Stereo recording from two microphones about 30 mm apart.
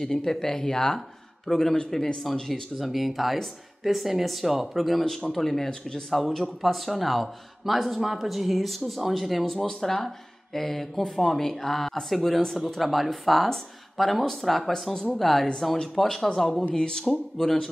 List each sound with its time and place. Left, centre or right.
0.0 s speech: centre
2.8 s speech: centre
5.3 s speech: centre
5.7 s speech: left
6.0 s speech: centre
9.7 s speech: centre
14.7 s speech: centre
16.7 s speech: left
17.4 s speech: centre